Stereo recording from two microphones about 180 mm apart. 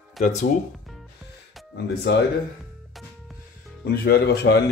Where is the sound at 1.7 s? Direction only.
60° left (ahead or behind).